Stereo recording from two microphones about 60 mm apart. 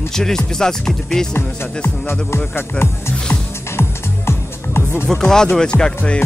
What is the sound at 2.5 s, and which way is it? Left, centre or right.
Speech, left.